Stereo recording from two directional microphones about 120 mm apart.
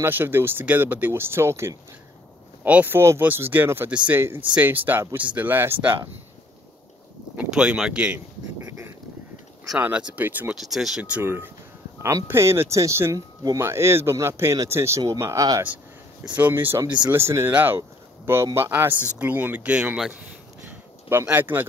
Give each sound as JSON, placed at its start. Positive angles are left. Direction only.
{"t": 0.0, "sound": "speech", "side_deg": -15}
{"t": 7.3, "sound": "speech", "side_deg": -5}
{"t": 8.6, "sound": "a sound", "side_deg": -25}
{"t": 9.8, "sound": "speech", "side_deg": -15}
{"t": 10.5, "sound": "speech", "side_deg": 0}
{"t": 16.3, "sound": "speech", "side_deg": -15}
{"t": 20.6, "sound": "a sound", "side_deg": -20}